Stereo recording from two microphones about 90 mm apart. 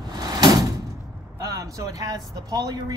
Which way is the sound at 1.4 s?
40° right (ahead or behind).